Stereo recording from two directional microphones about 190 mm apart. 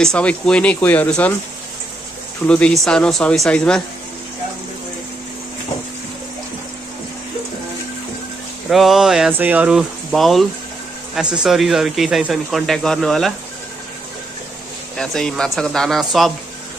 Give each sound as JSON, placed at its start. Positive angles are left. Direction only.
{"t": 0.0, "sound": "speech", "side_deg": 5}
{"t": 2.4, "sound": "speech", "side_deg": 5}
{"t": 8.6, "sound": "speech", "side_deg": 0}
{"t": 15.0, "sound": "speech", "side_deg": 5}